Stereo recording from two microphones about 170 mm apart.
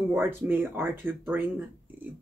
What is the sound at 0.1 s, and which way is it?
Speech, 10° right (ahead or behind).